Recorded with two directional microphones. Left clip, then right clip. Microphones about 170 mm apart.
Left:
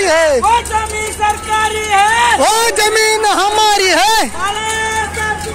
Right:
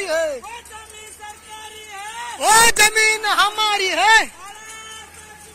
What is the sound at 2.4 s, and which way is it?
Speech, 15° left (ahead or behind).